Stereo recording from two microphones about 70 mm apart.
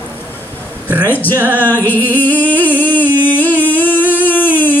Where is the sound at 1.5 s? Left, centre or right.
Left.